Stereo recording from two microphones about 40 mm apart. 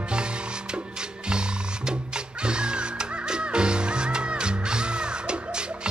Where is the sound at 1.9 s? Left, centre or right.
Right.